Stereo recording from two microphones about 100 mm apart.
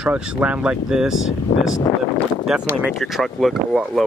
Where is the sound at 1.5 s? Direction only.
60° left (ahead or behind).